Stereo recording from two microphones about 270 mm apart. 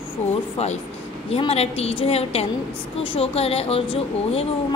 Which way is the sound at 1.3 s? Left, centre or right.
Left.